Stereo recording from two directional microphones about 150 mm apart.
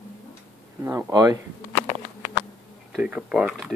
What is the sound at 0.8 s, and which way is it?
Speech, 20° right (ahead or behind).